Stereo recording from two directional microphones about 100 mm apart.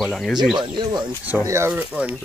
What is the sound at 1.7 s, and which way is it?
Speech, 10° right (ahead or behind).